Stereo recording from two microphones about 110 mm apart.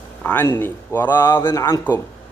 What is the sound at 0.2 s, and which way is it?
A man's voice, 20° left (ahead or behind).